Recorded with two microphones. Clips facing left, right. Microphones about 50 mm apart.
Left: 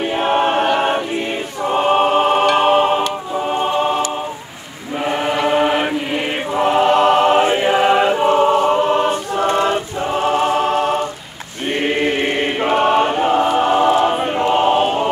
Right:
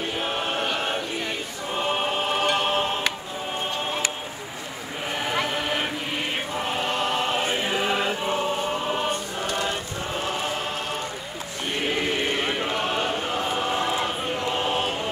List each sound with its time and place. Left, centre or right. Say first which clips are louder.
0.1 s choir: left 15 dB; left
2.5 s music: left 11 dB; left
3.4 s a sound: left 11 dB; left
5.0 s chant: left 9 dB; left
7.4 s a sound: left 10 dB; left
7.7 s choir: left 11 dB; left
9.5 s choir: left 10 dB; left
11.6 s chant: left 9 dB; left